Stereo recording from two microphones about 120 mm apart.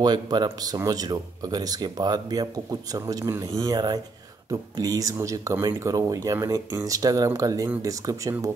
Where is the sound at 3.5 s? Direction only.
35° right (ahead or behind).